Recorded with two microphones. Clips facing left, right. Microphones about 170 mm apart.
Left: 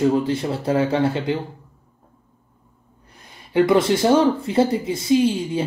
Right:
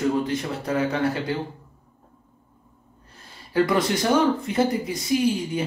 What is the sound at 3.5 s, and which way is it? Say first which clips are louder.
Speech: left 5 dB; 25° left (ahead or behind).